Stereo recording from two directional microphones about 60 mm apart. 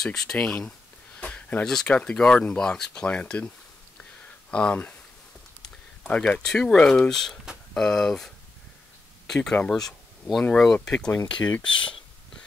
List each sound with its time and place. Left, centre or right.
0.0 s speech: centre
0.6 s a sound: centre
1.7 s speech: centre
4.0 s a sound: centre
6.3 s speech: centre
9.3 s speech: centre
11.1 s speech: left